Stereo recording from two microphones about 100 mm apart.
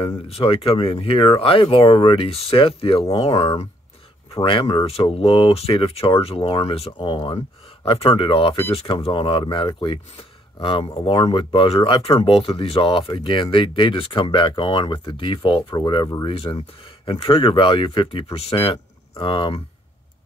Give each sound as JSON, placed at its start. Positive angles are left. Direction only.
{"t": 0.0, "sound": "speech", "side_deg": 70}
{"t": 4.3, "sound": "speech", "side_deg": 55}
{"t": 4.7, "sound": "speech", "side_deg": 70}
{"t": 6.9, "sound": "speech", "side_deg": 50}
{"t": 7.8, "sound": "speech", "side_deg": 65}
{"t": 16.3, "sound": "speech", "side_deg": 60}